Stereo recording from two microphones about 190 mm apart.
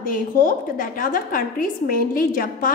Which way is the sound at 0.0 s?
45° left (ahead or behind).